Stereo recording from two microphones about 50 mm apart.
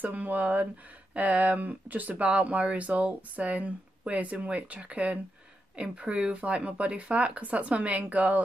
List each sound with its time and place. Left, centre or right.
0.0 s speech: right